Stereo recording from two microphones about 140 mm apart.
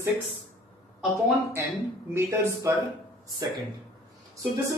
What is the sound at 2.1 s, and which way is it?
Speech, 20° right (ahead or behind).